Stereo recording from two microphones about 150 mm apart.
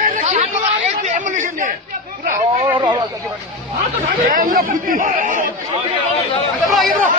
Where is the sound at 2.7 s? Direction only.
30° right (ahead or behind).